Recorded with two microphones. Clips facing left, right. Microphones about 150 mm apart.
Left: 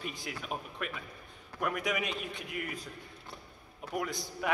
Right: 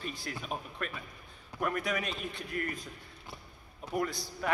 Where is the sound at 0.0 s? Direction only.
15° left (ahead or behind).